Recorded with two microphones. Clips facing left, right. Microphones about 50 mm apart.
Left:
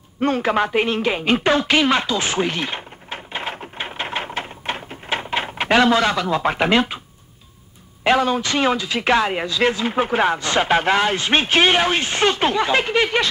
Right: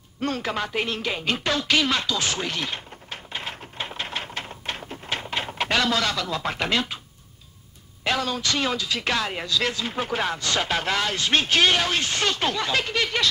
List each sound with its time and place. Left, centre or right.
0.2 s music: left
8.0 s speech: left